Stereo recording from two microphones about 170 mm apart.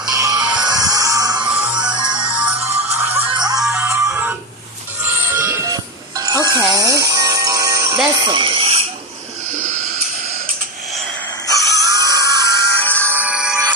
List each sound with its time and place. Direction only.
0.1 s music: 20° right (ahead or behind)
3.5 s music: 5° right (ahead or behind)
3.8 s music: 15° right (ahead or behind); by 8.8 s 35° right (ahead or behind)
11.5 s a sound: 20° left (ahead or behind)
11.9 s music: 20° right (ahead or behind)
12.4 s music: 10° left (ahead or behind)
13.0 s music: 10° right (ahead or behind)